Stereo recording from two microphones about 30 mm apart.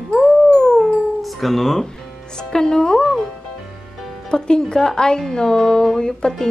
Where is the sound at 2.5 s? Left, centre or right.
Left.